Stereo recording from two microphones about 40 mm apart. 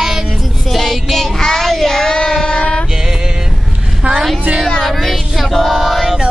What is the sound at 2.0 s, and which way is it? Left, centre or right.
Child singing, left.